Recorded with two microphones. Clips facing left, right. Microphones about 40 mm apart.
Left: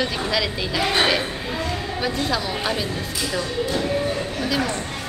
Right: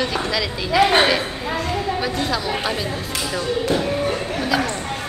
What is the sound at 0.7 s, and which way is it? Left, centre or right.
Speech, right.